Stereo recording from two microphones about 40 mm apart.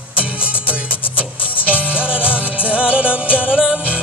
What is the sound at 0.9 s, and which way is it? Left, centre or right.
Music, left.